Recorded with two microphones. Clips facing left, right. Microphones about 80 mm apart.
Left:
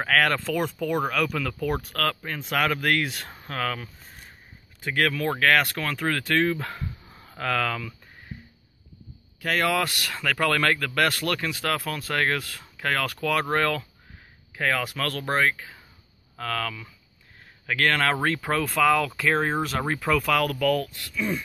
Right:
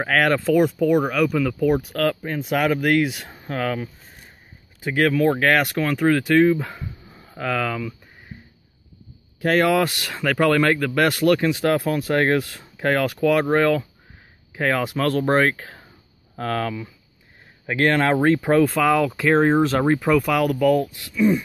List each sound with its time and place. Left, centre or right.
0.0 s speech: centre
9.4 s speech: right
16.3 s speech: right